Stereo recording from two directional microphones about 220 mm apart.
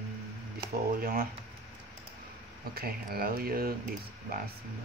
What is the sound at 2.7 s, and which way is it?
Speech, 45° right (ahead or behind).